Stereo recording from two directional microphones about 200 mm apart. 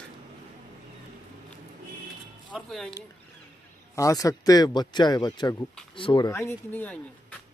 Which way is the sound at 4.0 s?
15° left (ahead or behind).